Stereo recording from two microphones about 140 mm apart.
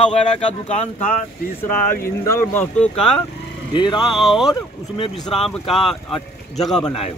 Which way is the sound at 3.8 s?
35° left (ahead or behind).